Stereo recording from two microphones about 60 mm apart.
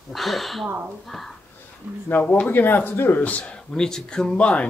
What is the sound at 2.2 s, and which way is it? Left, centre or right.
Speech, left.